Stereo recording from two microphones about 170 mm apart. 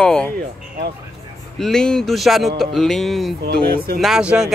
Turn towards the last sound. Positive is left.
turn(degrees=-5)  # may be behind; listen again after turning